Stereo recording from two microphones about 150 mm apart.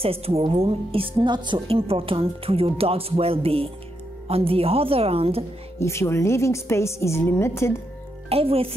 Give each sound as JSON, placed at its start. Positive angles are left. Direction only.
{"t": 0.0, "sound": "a woman's voice", "side_deg": -40}
{"t": 5.8, "sound": "a woman's voice", "side_deg": 20}
{"t": 8.3, "sound": "a woman's voice", "side_deg": -40}